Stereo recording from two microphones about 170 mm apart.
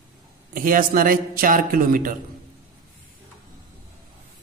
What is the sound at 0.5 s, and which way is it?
A man's voice, 55° right (ahead or behind).